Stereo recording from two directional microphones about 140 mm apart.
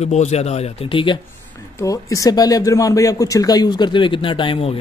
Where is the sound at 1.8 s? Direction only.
25° left (ahead or behind).